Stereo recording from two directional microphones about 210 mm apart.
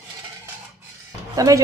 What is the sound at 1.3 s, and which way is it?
Speech, 15° right (ahead or behind).